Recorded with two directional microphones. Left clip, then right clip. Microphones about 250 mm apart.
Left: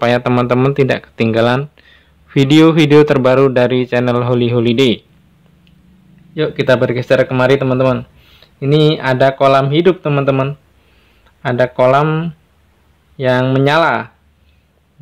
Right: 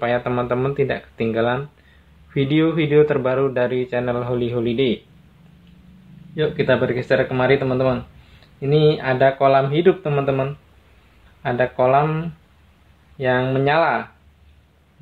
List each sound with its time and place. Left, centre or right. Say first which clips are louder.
0.0 s speech: left 7 dB; left
6.3 s speech: left 5 dB; left